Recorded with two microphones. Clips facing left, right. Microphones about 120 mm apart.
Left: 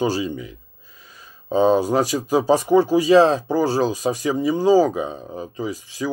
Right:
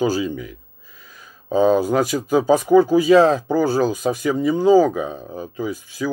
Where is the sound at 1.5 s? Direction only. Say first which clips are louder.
Right 1 dB; 30° left (ahead or behind).